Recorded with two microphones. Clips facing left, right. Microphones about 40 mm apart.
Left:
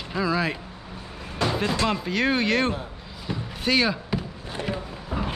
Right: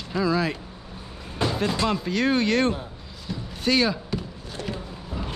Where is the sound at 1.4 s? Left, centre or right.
Centre.